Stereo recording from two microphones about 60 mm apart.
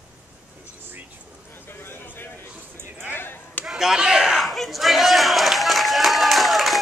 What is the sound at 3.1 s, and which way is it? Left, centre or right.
Chop, left.